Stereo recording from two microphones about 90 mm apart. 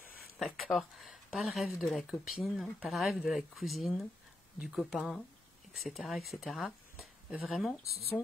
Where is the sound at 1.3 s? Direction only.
10° right (ahead or behind).